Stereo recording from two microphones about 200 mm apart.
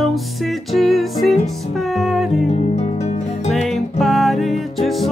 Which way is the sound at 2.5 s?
35° left (ahead or behind).